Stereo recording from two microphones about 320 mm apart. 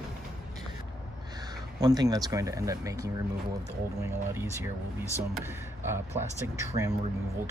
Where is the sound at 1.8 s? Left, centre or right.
Centre.